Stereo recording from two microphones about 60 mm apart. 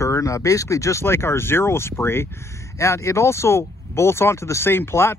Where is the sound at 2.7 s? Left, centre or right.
Left.